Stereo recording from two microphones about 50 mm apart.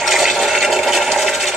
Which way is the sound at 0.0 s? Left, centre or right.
Centre.